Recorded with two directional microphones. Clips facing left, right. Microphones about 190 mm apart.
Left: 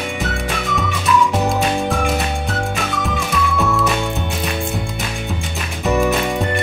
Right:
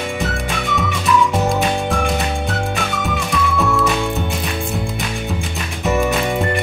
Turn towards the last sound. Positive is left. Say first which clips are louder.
# even
turn(degrees=0)  # may be behind; listen again after turning